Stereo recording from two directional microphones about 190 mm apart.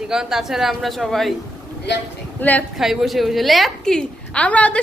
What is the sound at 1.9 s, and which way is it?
Speech, 65° left (ahead or behind).